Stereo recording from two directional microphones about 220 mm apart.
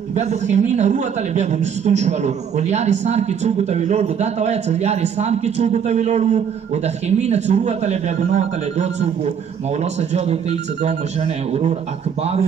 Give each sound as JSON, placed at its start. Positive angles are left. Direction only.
{"t": 0.1, "sound": "a man's voice", "side_deg": -30}